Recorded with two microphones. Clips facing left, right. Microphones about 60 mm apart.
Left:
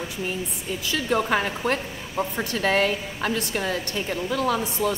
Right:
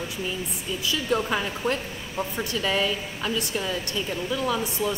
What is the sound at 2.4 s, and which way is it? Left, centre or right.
A woman's voice, left.